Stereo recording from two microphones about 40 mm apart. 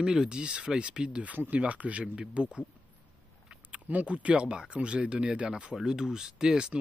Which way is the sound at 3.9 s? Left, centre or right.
Right.